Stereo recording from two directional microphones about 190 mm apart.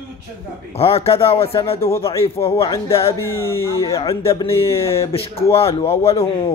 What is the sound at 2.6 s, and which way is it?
Speech, 15° left (ahead or behind).